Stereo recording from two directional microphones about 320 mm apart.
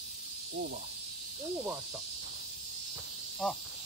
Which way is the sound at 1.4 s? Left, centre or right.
Centre.